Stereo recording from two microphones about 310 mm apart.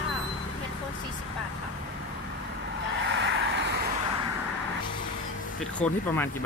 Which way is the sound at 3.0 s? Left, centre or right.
Right.